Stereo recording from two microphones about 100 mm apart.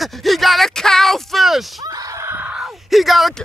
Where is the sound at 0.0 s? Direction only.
Centre (ahead or behind).